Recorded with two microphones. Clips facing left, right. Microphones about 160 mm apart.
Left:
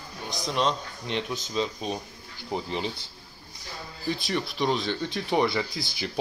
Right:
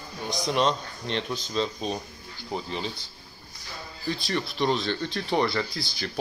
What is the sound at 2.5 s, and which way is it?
Speech, 20° left (ahead or behind).